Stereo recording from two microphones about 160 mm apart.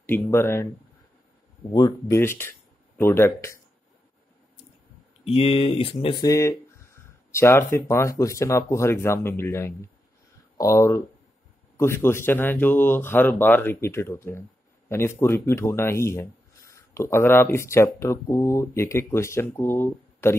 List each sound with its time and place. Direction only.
0.0 s speech: 15° left (ahead or behind)
1.7 s speech: 25° left (ahead or behind)
5.2 s speech: 35° left (ahead or behind)
6.2 s speech: 20° left (ahead or behind)